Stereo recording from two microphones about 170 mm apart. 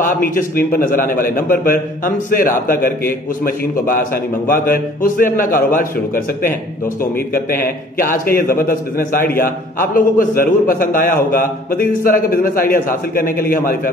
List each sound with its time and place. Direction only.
0.0 s a man's voice: 55° left (ahead or behind)
7.3 s a man's voice: 55° left (ahead or behind)